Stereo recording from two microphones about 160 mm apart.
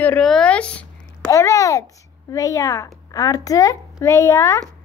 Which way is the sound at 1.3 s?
20° left (ahead or behind).